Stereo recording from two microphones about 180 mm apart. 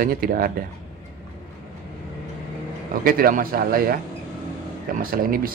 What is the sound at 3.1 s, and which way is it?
Speech, 55° right (ahead or behind).